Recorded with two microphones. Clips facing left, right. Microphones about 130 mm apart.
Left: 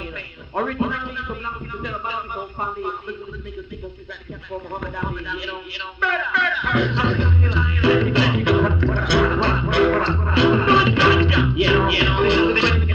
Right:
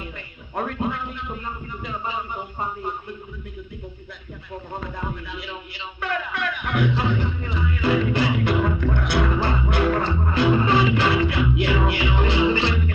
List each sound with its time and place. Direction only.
0.6 s a man's voice: 80° left
4.7 s music: 65° left (ahead or behind)